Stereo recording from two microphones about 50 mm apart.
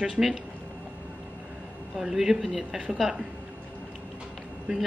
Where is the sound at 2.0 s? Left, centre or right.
Centre.